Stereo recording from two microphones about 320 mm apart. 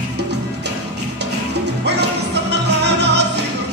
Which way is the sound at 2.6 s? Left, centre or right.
Right.